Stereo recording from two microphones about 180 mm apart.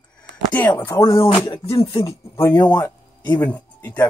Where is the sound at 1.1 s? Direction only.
25° left (ahead or behind).